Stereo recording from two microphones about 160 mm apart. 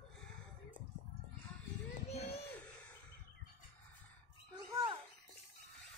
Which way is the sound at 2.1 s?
40° left (ahead or behind).